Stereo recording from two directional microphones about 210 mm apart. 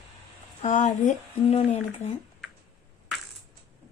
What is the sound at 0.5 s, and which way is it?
Speech, 35° left (ahead or behind).